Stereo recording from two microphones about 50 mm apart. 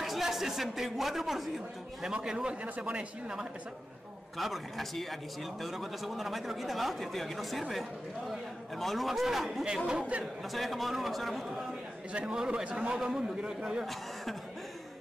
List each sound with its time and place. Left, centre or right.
0.0 s speech: centre
2.2 s a man's voice: centre
2.6 s speech: right
4.4 s speech: centre
9.8 s speech: right
10.5 s speech: centre
12.1 s a man's voice: right